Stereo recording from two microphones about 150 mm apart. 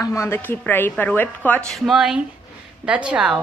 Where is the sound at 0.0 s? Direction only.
20° left (ahead or behind).